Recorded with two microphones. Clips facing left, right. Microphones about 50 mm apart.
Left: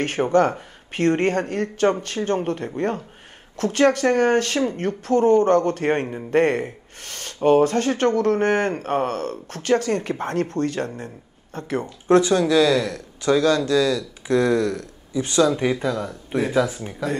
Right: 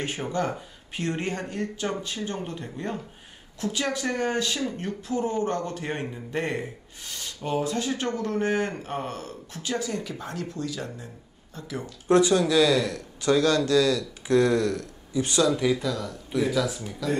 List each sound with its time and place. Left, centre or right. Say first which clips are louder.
0.0 s speech: left 10 dB; left
12.3 s speech: left 3 dB; left